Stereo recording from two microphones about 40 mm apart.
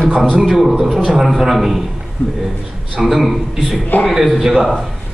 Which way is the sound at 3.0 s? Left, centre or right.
Centre.